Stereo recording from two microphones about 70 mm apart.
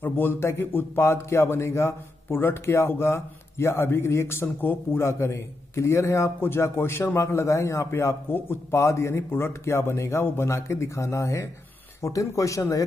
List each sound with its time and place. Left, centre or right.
0.0 s a man's voice: left
5.0 s a man's voice: left
6.4 s a man's voice: left